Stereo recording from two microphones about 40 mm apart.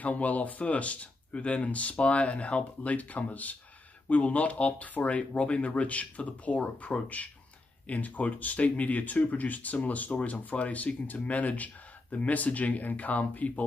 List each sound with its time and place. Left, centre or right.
0.0 s speech: left